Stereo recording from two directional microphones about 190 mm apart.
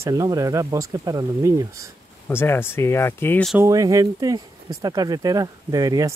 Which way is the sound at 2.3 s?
10° left (ahead or behind).